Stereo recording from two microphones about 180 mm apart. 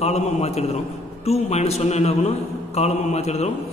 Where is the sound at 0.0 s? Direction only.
35° left (ahead or behind).